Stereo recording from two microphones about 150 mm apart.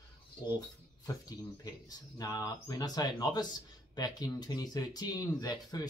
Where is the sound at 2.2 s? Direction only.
25° left (ahead or behind).